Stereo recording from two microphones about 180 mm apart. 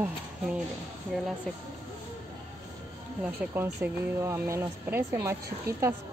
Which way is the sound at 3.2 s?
10° right (ahead or behind).